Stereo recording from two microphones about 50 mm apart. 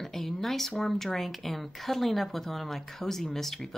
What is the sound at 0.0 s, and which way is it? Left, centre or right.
Speech, centre.